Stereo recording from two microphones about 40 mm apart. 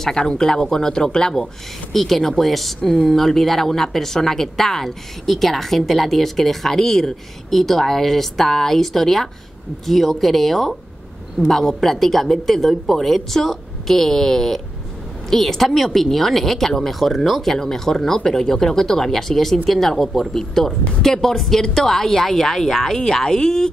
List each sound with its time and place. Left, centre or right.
0.0 s a woman's voice: centre